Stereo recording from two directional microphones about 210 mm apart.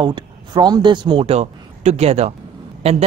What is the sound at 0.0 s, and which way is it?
A man's voice, 20° right (ahead or behind).